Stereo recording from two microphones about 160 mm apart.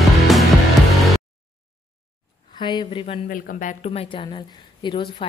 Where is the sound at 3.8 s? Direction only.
40° left (ahead or behind).